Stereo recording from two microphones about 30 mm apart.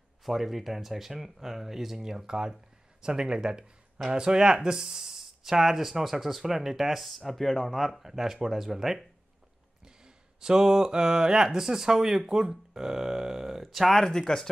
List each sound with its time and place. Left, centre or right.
0.2 s speech: centre
7.2 s speech: centre
8.0 s speech: centre
10.0 s speech: right
13.6 s speech: centre
13.9 s speech: centre